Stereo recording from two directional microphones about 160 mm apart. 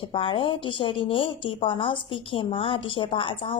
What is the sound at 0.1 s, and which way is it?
A woman's voice, 35° left (ahead or behind).